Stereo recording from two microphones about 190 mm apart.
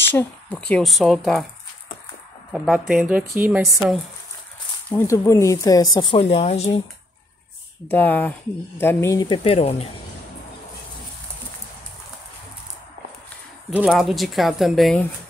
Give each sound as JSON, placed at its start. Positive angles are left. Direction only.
{"t": 0.1, "sound": "speech", "side_deg": 10}
{"t": 2.5, "sound": "speech", "side_deg": 0}
{"t": 4.9, "sound": "speech", "side_deg": 15}
{"t": 7.9, "sound": "speech", "side_deg": 10}
{"t": 13.7, "sound": "speech", "side_deg": -5}